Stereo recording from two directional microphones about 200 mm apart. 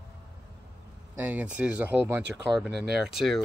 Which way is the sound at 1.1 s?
10° right (ahead or behind).